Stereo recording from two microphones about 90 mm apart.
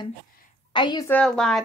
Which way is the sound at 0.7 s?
60° left (ahead or behind).